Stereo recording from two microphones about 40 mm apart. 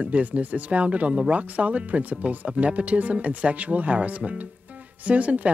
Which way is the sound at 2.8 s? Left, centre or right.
Right.